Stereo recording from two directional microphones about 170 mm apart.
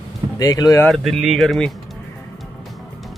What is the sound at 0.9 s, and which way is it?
Speech, centre (ahead or behind).